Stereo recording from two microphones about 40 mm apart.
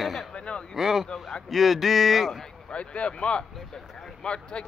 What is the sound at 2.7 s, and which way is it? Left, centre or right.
Speech, left.